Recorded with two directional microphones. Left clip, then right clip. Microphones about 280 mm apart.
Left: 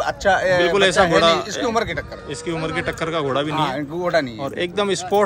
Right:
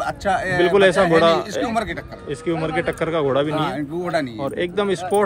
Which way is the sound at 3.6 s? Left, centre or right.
Centre.